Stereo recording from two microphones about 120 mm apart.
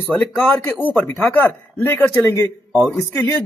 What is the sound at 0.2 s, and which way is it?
A man's voice, 15° left (ahead or behind).